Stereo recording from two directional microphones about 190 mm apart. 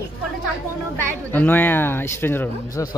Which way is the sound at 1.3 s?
10° left (ahead or behind).